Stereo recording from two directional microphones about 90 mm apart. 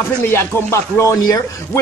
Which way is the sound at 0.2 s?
25° left (ahead or behind).